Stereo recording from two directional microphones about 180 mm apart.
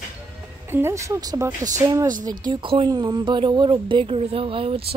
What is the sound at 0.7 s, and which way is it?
Speech, 15° right (ahead or behind).